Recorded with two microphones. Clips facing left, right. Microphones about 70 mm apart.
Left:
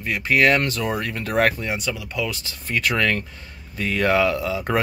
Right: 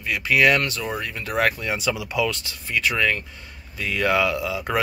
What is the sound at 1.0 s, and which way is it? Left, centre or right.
Speech, left.